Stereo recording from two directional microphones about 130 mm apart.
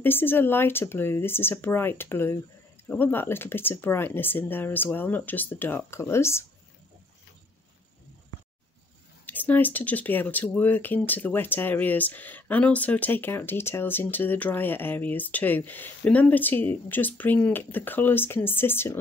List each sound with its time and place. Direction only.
0.0 s speech: 15° left (ahead or behind)
9.2 s speech: 15° left (ahead or behind)